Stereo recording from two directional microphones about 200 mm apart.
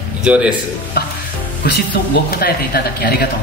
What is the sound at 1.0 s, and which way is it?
Stir, 50° left (ahead or behind).